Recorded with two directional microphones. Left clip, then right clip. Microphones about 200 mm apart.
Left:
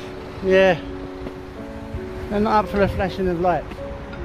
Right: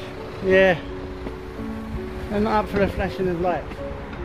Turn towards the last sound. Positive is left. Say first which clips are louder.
# left 3 dB
turn(degrees=20)  # may be behind; listen again after turning